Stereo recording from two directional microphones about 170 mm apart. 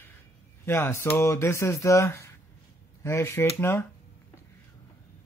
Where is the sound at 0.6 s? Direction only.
15° left (ahead or behind).